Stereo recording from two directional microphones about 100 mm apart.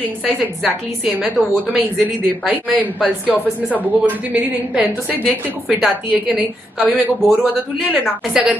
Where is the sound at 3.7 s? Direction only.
15° right (ahead or behind).